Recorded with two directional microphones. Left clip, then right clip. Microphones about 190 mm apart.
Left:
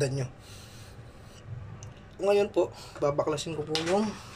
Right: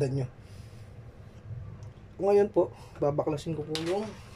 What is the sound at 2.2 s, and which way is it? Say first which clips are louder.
Speech: right 1 dB; 35° right (ahead or behind).